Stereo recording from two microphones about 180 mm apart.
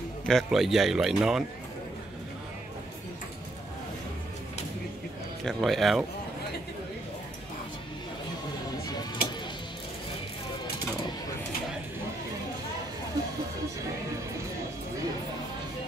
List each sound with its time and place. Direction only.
0.3 s speech: centre (ahead or behind)
5.4 s speech: centre (ahead or behind)
9.2 s music: 55° left (ahead or behind)